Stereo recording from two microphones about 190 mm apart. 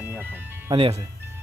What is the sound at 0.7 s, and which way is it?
Speech, 30° right (ahead or behind).